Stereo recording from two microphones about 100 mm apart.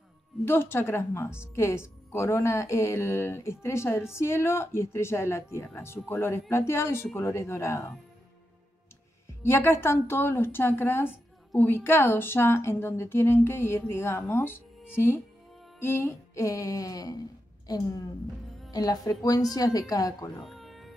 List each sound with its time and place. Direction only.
0.5 s speech: 25° left (ahead or behind)
9.4 s speech: 25° left (ahead or behind)
15.8 s music: 25° left (ahead or behind)
18.7 s a woman's voice: 40° left (ahead or behind)
20.4 s music: centre (ahead or behind)